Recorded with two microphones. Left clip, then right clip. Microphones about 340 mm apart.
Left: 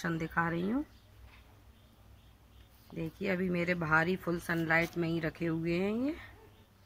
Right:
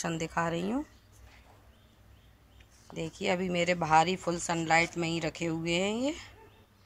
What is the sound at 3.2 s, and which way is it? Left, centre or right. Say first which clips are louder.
A woman's voice: right 4 dB; centre.